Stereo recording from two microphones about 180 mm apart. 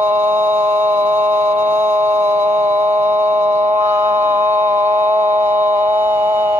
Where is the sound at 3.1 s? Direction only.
10° right (ahead or behind).